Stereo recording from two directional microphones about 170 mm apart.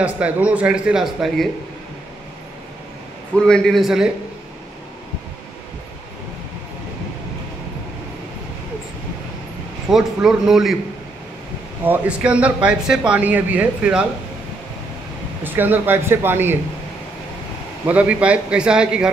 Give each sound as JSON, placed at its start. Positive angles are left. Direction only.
{"t": 0.0, "sound": "speech", "side_deg": -10}
{"t": 3.3, "sound": "speech", "side_deg": 5}
{"t": 9.8, "sound": "speech", "side_deg": 0}
{"t": 11.8, "sound": "speech", "side_deg": -10}
{"t": 15.4, "sound": "speech", "side_deg": -10}
{"t": 17.8, "sound": "speech", "side_deg": -10}